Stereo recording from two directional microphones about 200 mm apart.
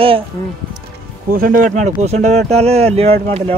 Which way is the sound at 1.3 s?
45° right (ahead or behind).